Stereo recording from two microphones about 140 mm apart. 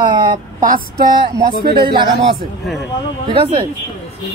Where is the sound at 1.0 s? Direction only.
30° right (ahead or behind).